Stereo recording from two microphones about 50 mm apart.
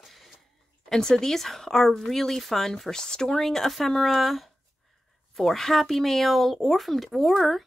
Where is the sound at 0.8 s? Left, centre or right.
Centre.